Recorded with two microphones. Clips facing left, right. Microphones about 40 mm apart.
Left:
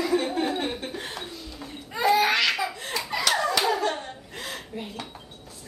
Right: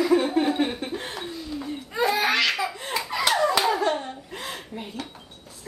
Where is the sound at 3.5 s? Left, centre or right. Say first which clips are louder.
Right 2 dB; centre.